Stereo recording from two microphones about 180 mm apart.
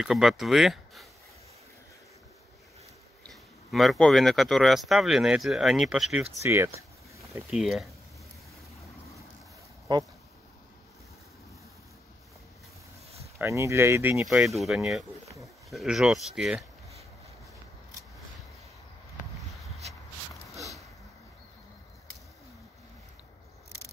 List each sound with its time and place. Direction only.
0.0 s speech: centre (ahead or behind)
3.3 s speech: centre (ahead or behind)
6.4 s speech: 15° right (ahead or behind)
7.5 s speech: centre (ahead or behind)
13.4 s speech: 15° right (ahead or behind)
14.5 s speech: centre (ahead or behind)
19.6 s rub: centre (ahead or behind)